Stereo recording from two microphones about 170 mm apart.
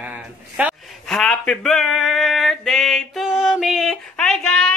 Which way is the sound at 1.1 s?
5° left (ahead or behind).